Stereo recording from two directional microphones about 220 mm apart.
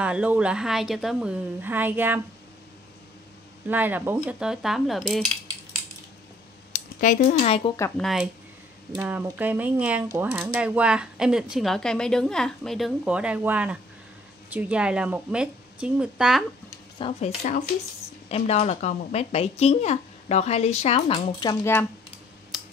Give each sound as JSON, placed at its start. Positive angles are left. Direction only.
{"t": 0.0, "sound": "a woman's voice", "side_deg": -5}
{"t": 3.6, "sound": "a woman's voice", "side_deg": -10}
{"t": 6.7, "sound": "speech", "side_deg": 35}
{"t": 7.5, "sound": "speech", "side_deg": 20}
{"t": 8.0, "sound": "a woman's voice", "side_deg": 0}
{"t": 17.0, "sound": "speech", "side_deg": 25}
{"t": 17.4, "sound": "speech", "side_deg": 35}
{"t": 22.5, "sound": "computer keyboard", "side_deg": 0}